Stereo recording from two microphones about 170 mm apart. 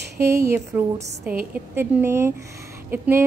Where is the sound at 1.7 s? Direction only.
15° right (ahead or behind).